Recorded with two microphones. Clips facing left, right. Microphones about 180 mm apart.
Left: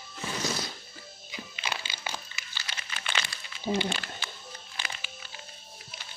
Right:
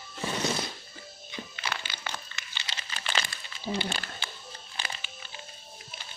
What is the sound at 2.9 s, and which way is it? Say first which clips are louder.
Crumpling: right 2 dB; 35° right (ahead or behind).